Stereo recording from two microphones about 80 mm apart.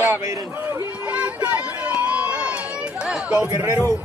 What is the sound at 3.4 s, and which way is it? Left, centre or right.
Speech, right.